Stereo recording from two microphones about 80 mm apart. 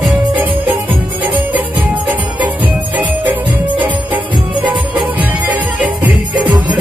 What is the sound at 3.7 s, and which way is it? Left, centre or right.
Music, centre.